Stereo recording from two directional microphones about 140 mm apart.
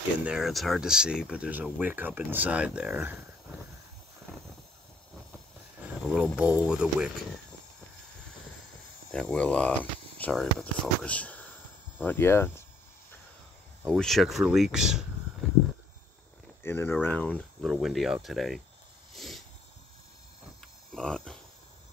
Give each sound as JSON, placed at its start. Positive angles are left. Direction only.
{"t": 0.2, "sound": "speech", "side_deg": -5}
{"t": 6.0, "sound": "speech", "side_deg": -10}
{"t": 9.1, "sound": "speech", "side_deg": 5}
{"t": 13.8, "sound": "speech", "side_deg": 0}
{"t": 16.6, "sound": "speech", "side_deg": 15}
{"t": 17.6, "sound": "speech", "side_deg": 0}
{"t": 19.1, "sound": "a sound", "side_deg": 0}
{"t": 20.9, "sound": "a sound", "side_deg": 5}